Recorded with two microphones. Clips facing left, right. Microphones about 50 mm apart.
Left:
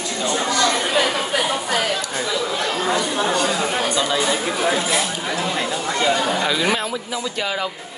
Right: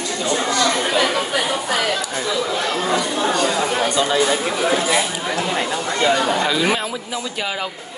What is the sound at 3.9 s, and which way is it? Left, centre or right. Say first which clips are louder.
Speech: right 2 dB; centre.